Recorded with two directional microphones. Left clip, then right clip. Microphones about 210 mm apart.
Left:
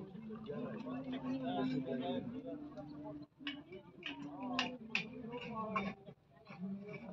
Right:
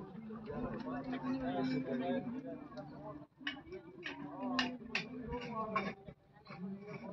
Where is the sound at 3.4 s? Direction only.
50° right (ahead or behind).